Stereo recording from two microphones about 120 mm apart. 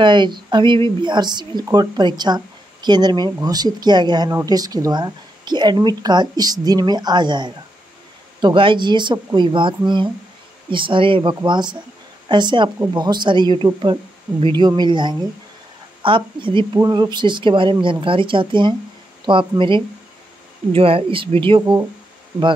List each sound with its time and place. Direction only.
0.0 s speech: 40° right (ahead or behind)
14.8 s speech: 40° right (ahead or behind)
16.7 s speech: 30° right (ahead or behind)
20.7 s speech: 50° right (ahead or behind)